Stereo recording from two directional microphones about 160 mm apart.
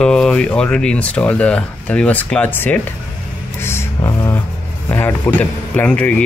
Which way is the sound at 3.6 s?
15° left (ahead or behind).